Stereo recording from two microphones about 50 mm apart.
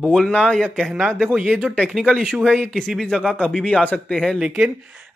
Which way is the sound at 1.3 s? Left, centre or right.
Right.